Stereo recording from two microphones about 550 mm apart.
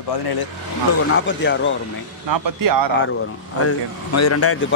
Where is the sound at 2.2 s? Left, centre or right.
Right.